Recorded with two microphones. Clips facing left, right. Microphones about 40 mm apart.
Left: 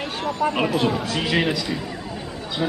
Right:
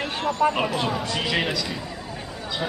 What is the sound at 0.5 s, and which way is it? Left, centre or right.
A man's voice, centre.